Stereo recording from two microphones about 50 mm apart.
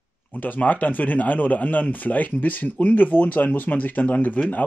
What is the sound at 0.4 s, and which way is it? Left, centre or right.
Speech, left.